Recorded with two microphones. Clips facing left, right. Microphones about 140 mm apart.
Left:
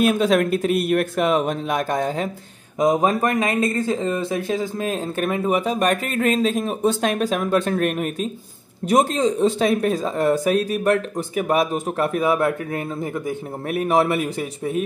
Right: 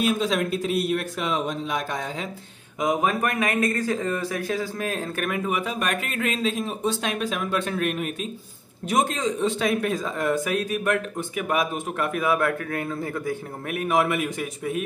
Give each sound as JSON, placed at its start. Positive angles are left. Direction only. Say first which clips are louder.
{"t": 0.0, "sound": "speech", "louder": "left 6 dB", "side_deg": 55}
{"t": 2.8, "sound": "speech", "louder": "left 5 dB", "side_deg": 35}
{"t": 13.7, "sound": "speech", "louder": "left 4 dB", "side_deg": 35}